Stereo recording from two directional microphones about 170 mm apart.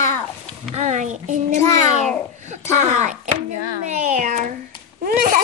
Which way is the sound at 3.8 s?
45° right (ahead or behind).